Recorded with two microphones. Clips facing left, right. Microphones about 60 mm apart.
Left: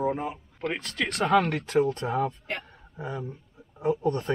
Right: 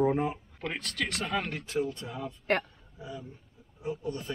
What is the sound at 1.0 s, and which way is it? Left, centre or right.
Speech, left.